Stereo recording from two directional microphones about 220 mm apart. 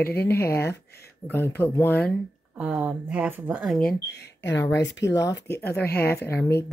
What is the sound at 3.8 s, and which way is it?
Speech, 50° left (ahead or behind).